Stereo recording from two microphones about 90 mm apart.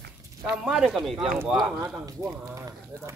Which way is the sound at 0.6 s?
5° right (ahead or behind).